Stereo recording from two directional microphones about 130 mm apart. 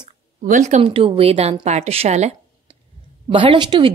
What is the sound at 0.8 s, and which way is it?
Speech, 45° right (ahead or behind).